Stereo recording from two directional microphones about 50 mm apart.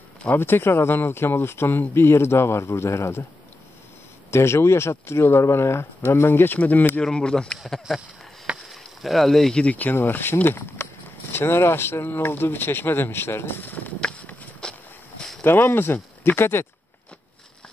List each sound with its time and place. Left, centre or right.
0.3 s speech: left
4.3 s speech: left
6.1 s speech: left
6.6 s speech: left
7.0 s speech: centre
8.6 s a sound: centre
9.5 s speech: left
9.8 s speech: left
14.0 s clip-clop: left
14.6 s a sound: centre
15.4 s speech: left